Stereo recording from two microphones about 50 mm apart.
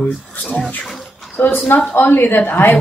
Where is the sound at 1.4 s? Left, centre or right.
Left.